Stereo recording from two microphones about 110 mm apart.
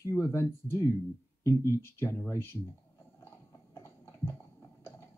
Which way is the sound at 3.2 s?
25° left (ahead or behind).